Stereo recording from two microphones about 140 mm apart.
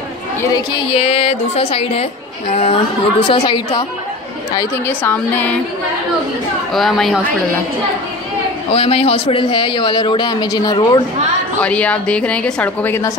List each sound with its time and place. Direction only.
0.4 s a woman's voice: 25° left (ahead or behind)
0.9 s music: 45° left (ahead or behind)
2.5 s a man's voice: 45° left (ahead or behind)
4.8 s a woman's voice: 15° left (ahead or behind)
6.7 s speech: centre (ahead or behind)
8.7 s a man's voice: 45° left (ahead or behind); by 11.0 s 30° left (ahead or behind)
11.6 s a woman's voice: 10° left (ahead or behind)